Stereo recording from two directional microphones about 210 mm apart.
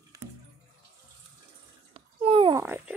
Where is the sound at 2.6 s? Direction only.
10° right (ahead or behind).